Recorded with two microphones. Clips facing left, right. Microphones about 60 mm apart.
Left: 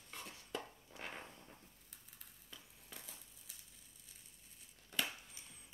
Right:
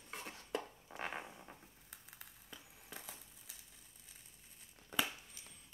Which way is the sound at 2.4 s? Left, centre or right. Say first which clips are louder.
Right 2 dB; right.